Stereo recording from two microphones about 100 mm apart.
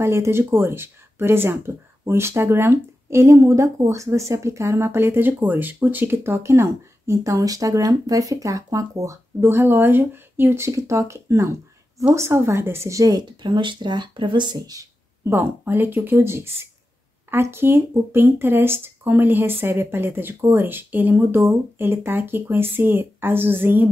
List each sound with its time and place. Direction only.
0.0 s speech: 25° right (ahead or behind); by 14.9 s 40° right (ahead or behind)
15.2 s speech: 20° right (ahead or behind)